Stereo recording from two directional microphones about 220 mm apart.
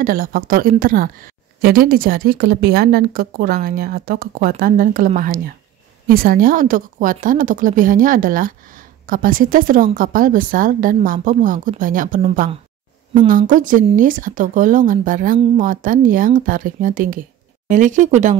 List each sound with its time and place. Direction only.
0.0 s a woman's voice: 40° right (ahead or behind)
12.2 s a woman's voice: 30° right (ahead or behind)